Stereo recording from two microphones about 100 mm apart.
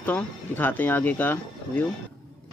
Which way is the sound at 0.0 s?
20° left (ahead or behind).